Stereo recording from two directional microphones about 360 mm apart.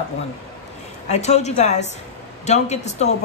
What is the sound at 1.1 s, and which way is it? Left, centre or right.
A woman's voice, centre.